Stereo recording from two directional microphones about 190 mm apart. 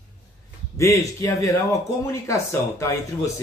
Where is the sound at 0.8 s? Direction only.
15° left (ahead or behind).